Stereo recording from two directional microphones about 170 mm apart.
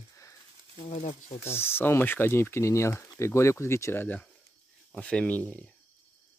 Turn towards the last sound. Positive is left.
turn(degrees=10)  # may be behind; listen again after turning